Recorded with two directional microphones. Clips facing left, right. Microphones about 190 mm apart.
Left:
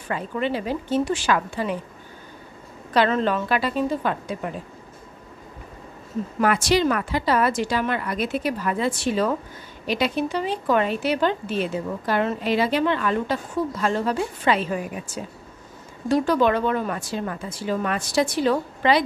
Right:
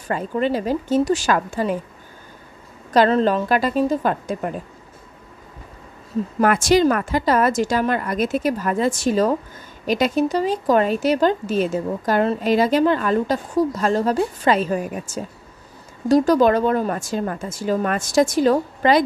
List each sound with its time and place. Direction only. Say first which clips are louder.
0.1 s a woman's voice: right 4 dB; 40° right (ahead or behind)
2.9 s a woman's voice: right 4 dB; 40° right (ahead or behind)
6.4 s a woman's voice: right 4 dB; 45° right (ahead or behind)